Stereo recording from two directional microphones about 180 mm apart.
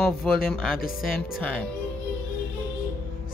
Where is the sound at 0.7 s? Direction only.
55° left (ahead or behind).